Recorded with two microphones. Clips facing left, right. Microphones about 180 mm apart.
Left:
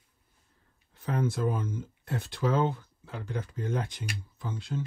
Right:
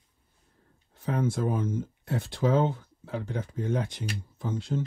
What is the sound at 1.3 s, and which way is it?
Speech, 55° right (ahead or behind).